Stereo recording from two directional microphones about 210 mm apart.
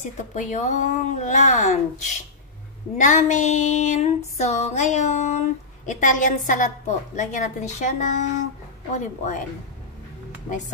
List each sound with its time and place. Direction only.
0.3 s female singing: 35° left (ahead or behind)